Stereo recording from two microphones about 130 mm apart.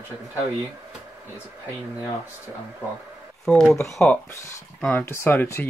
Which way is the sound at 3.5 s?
10° left (ahead or behind).